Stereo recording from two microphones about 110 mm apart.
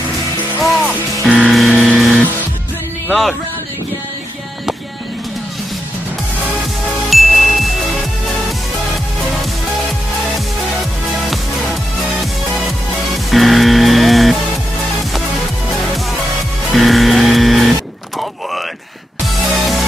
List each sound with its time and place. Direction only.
1.2 s music: centre (ahead or behind)
7.1 s music: centre (ahead or behind)
11.2 s music: centre (ahead or behind)
16.7 s music: centre (ahead or behind)
19.2 s music: centre (ahead or behind)